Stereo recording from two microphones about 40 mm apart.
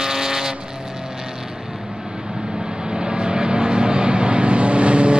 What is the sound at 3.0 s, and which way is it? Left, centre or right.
Vehicle, centre.